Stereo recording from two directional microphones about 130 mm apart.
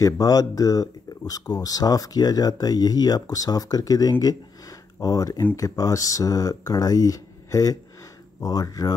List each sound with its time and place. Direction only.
0.0 s speech: 30° left (ahead or behind)